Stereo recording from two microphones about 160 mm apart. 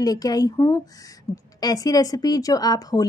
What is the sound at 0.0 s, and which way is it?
A woman's voice, 25° left (ahead or behind).